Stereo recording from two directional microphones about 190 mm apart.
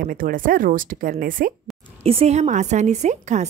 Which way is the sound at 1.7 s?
Centre (ahead or behind).